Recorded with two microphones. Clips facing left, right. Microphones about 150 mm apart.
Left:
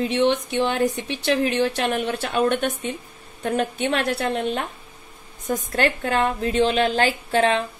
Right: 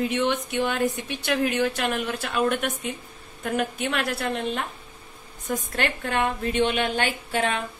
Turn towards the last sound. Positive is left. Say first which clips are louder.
# left 6 dB
turn(degrees=35)  # may be behind; listen again after turning